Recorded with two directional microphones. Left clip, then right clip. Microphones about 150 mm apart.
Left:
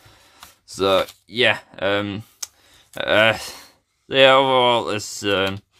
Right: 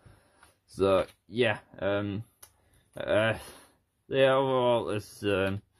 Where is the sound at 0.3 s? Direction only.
15° left (ahead or behind).